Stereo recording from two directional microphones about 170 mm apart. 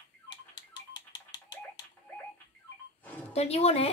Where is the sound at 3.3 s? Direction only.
40° left (ahead or behind).